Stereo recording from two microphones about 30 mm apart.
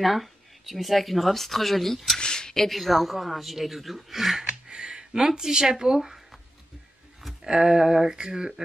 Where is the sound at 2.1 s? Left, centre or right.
Left.